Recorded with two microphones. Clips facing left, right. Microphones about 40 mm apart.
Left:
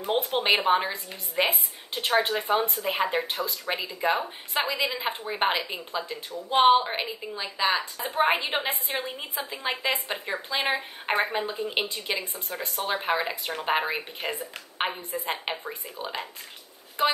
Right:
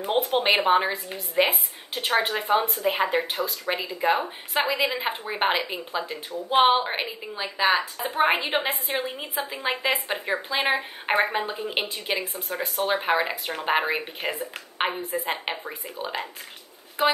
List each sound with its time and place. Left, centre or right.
0.2 s a woman's voice: centre